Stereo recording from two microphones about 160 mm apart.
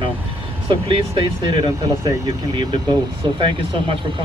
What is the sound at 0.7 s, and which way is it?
Speech, 30° right (ahead or behind).